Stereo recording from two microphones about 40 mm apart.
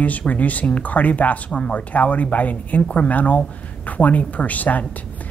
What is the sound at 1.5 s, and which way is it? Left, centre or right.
Speech, left.